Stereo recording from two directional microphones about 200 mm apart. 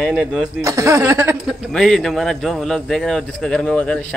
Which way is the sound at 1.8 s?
Centre (ahead or behind).